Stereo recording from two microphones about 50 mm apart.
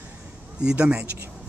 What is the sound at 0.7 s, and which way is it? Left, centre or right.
Speech, right.